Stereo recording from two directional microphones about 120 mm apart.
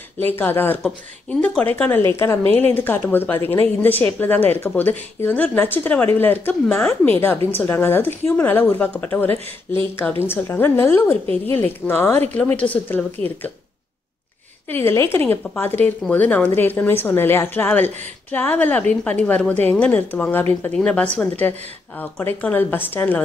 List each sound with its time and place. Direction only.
0.2 s speech: 15° left (ahead or behind)
14.7 s speech: 20° left (ahead or behind)